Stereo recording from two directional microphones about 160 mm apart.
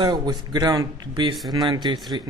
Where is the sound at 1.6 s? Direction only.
25° right (ahead or behind).